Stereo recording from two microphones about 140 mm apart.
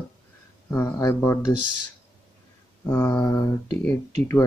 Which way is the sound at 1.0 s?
25° left (ahead or behind).